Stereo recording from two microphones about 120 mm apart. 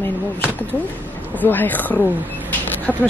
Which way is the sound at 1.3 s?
15° left (ahead or behind).